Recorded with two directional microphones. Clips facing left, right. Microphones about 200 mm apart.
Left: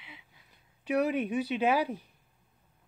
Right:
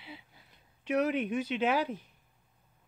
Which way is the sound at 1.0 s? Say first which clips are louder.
Left 1 dB; 10° left (ahead or behind).